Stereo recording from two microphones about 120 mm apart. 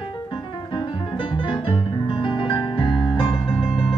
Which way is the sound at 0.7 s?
45° left (ahead or behind).